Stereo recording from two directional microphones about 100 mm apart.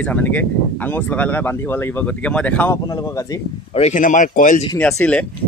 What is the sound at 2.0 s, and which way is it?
Speech, 10° left (ahead or behind).